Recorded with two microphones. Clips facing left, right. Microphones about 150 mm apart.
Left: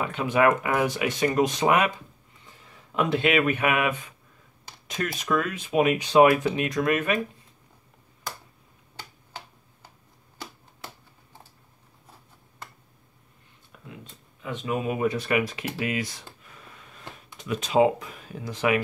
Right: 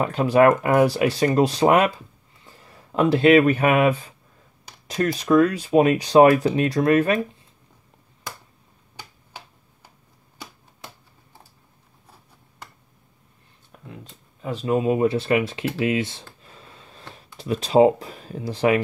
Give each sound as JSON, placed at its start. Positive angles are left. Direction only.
{"t": 0.0, "sound": "speech", "side_deg": -35}
{"t": 14.4, "sound": "speech", "side_deg": -35}